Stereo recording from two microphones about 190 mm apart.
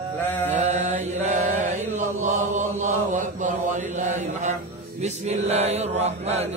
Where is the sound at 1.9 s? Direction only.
40° right (ahead or behind).